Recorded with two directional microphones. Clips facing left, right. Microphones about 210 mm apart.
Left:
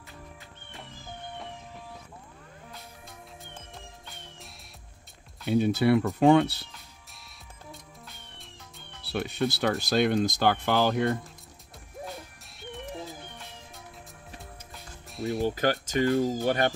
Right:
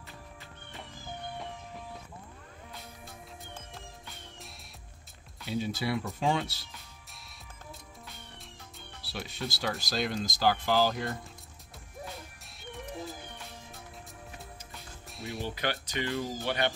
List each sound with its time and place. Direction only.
5.5 s speech: 60° left (ahead or behind)
9.1 s speech: 60° left (ahead or behind)
12.5 s music: centre (ahead or behind)
15.0 s music: centre (ahead or behind)
15.4 s speech: 45° left (ahead or behind)